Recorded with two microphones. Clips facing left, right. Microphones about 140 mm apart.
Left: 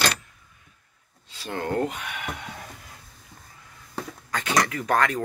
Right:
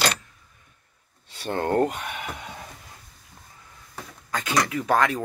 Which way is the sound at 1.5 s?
40° right (ahead or behind).